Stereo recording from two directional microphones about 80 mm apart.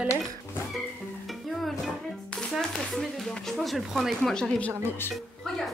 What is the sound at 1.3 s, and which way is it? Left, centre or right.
Music, centre.